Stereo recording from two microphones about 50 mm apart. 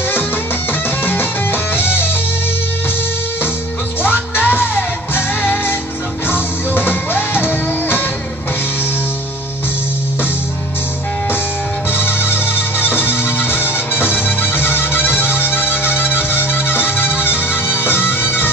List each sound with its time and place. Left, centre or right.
1.0 s music: left
4.0 s music: left
11.9 s music: left